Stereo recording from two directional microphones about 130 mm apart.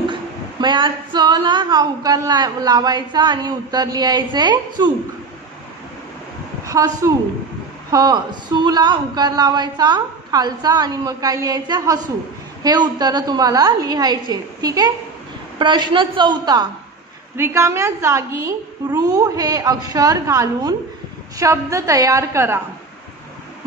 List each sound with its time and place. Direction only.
0.1 s a woman's voice: 35° right (ahead or behind)
6.6 s a woman's voice: 25° right (ahead or behind)
17.4 s a woman's voice: 20° right (ahead or behind)